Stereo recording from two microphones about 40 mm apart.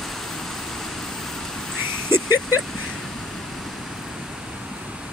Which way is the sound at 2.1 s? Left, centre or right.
Right.